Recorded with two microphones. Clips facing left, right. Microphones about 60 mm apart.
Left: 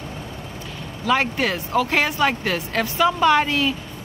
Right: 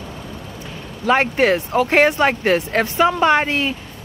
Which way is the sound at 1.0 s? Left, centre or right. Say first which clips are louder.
Right 5 dB; right.